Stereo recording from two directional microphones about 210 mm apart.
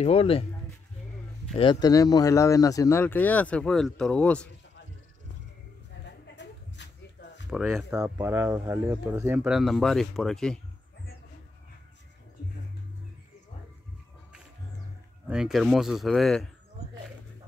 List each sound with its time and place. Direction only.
0.0 s speech: 30° left (ahead or behind)
1.5 s speech: 25° left (ahead or behind); by 4.5 s 5° left (ahead or behind)
6.0 s a sound: 55° left (ahead or behind)
7.5 s speech: centre (ahead or behind)
15.2 s speech: 5° right (ahead or behind)